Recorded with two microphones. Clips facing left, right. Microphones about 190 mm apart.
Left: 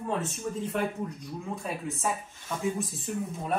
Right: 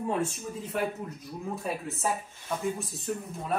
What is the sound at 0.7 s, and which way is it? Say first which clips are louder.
Speech: left 1 dB; 5° right (ahead or behind).